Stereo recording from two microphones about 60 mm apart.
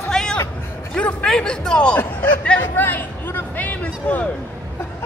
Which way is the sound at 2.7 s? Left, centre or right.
Left.